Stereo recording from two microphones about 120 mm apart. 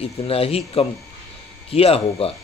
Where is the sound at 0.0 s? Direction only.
55° left (ahead or behind).